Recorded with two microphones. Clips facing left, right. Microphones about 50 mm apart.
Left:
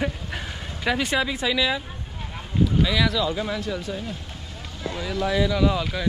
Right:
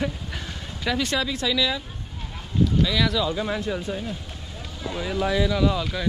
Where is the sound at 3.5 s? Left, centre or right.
Right.